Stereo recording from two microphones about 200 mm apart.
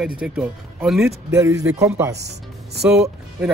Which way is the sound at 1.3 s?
15° right (ahead or behind).